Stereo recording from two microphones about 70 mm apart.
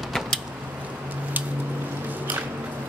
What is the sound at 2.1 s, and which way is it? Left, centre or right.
Squish, right.